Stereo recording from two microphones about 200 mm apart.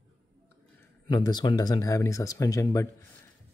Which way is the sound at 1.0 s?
20° left (ahead or behind).